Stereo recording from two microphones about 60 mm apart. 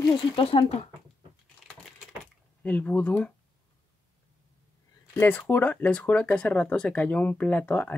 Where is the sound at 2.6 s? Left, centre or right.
Left.